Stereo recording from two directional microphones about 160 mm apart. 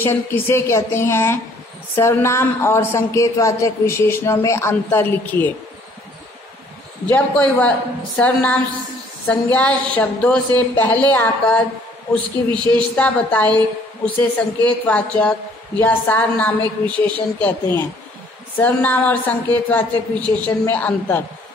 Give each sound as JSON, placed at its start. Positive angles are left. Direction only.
{"t": 0.0, "sound": "a woman's voice", "side_deg": 15}
{"t": 7.1, "sound": "a woman's voice", "side_deg": 10}
{"t": 14.9, "sound": "a woman's voice", "side_deg": 10}